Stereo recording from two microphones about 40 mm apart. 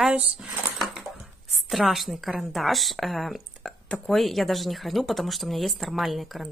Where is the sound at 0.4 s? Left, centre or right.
Centre.